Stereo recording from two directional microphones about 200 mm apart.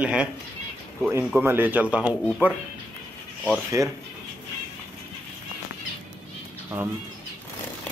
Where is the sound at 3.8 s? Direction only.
15° right (ahead or behind).